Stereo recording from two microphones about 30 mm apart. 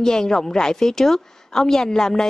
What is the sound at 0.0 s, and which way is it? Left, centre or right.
A woman's voice, centre.